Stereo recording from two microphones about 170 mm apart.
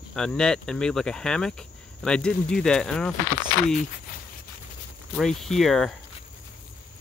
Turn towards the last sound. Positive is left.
turn(degrees=0)  # may be behind; listen again after turning